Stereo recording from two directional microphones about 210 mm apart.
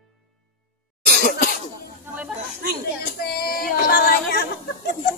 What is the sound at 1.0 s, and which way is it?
Cough, 40° left (ahead or behind).